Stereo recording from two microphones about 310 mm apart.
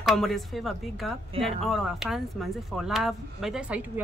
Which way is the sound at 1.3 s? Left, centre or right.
Centre.